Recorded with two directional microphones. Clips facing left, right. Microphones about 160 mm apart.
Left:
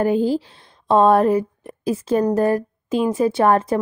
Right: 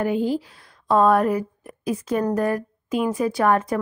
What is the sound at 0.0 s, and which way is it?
A woman's voice, 35° left (ahead or behind).